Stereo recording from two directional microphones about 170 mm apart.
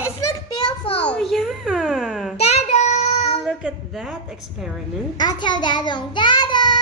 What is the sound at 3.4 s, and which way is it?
A child's voice, centre (ahead or behind).